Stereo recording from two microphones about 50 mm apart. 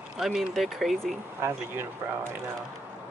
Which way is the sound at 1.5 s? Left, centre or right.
Right.